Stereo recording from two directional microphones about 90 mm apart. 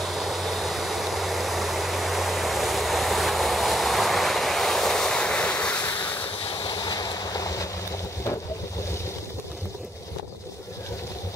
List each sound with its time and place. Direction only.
0.0 s vehicle: centre (ahead or behind); by 6.2 s 15° left (ahead or behind)
6.6 s waves: 50° left (ahead or behind)